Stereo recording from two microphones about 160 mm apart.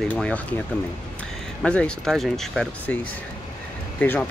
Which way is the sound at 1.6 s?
5° left (ahead or behind).